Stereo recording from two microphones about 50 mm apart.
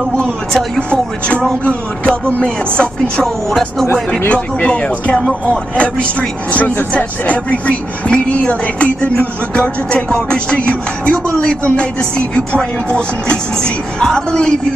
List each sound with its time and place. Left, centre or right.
0.7 s speech: left
4.3 s speech: left
6.5 s a woman's voice: left